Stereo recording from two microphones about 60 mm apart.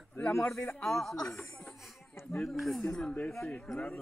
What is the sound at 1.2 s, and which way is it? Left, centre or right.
Speech, left.